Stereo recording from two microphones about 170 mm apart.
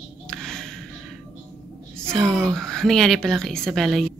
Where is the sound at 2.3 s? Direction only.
15° right (ahead or behind).